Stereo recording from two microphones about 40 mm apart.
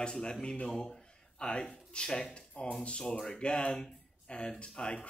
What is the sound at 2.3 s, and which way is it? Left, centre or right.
A man's voice, left.